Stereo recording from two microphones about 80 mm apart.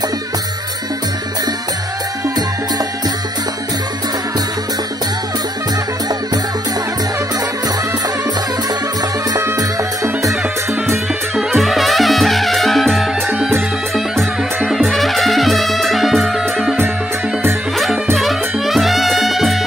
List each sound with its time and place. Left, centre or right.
10.2 s music: right
11.3 s music: centre
18.1 s music: centre